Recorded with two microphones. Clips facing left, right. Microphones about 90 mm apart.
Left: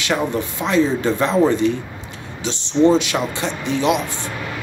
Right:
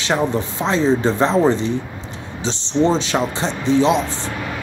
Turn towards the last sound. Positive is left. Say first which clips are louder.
# right 3 dB
turn(degrees=-30)  # may be behind; listen again after turning